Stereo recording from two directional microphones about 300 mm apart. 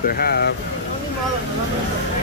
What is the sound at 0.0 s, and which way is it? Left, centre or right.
Speech, left.